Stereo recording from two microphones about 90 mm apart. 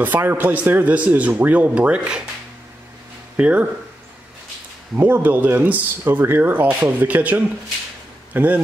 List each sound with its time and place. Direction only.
0.0 s speech: 20° right (ahead or behind)
3.3 s speech: 15° right (ahead or behind)
4.9 s speech: 25° right (ahead or behind)